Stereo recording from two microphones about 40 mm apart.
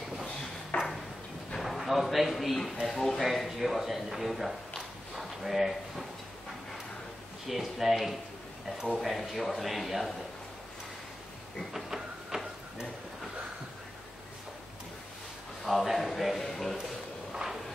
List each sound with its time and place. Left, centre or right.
0.7 s ping: left
1.6 s a man's voice: centre
3.2 s a man's voice: centre
7.4 s speech: centre
11.7 s printer: centre
15.6 s a man's voice: centre
17.3 s a sound: centre